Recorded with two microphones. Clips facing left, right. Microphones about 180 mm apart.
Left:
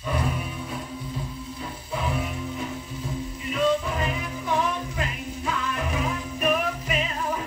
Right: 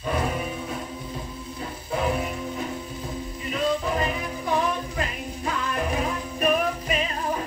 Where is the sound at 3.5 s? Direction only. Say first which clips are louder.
Left 1 dB; 40° right (ahead or behind).